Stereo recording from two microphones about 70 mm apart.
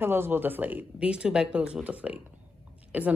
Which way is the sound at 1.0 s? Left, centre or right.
Centre.